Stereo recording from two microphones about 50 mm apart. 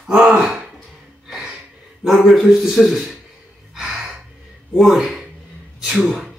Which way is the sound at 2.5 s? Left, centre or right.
Centre.